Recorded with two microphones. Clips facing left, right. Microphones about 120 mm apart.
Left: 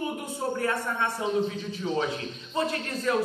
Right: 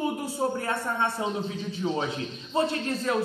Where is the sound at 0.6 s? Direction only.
30° right (ahead or behind).